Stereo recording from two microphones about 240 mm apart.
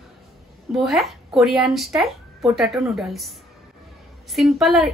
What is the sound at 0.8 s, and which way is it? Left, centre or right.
A woman's voice, centre.